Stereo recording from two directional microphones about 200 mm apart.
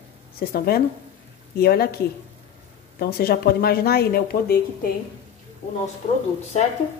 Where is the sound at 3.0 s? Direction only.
50° left (ahead or behind).